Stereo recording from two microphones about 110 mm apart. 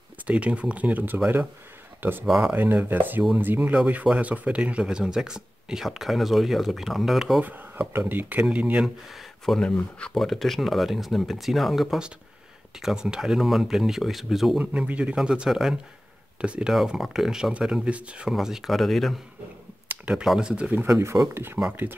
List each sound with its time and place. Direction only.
0.3 s speech: 10° right (ahead or behind)
2.2 s speech: centre (ahead or behind)
2.5 s speech: 15° right (ahead or behind)
7.4 s speech: 15° right (ahead or behind); by 19.1 s centre (ahead or behind)
19.9 s a sound: 10° right (ahead or behind)
20.2 s speech: 5° right (ahead or behind)
20.9 s speech: 30° right (ahead or behind)